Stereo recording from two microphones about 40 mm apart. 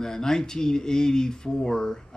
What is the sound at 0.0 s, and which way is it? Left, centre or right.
A man's voice, centre.